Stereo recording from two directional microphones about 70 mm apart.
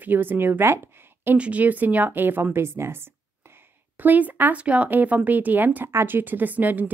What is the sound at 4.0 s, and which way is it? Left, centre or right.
A woman's voice, right.